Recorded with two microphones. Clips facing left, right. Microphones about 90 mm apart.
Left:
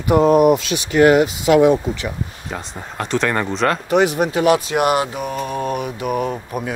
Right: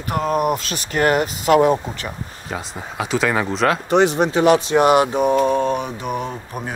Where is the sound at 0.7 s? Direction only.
45° right (ahead or behind).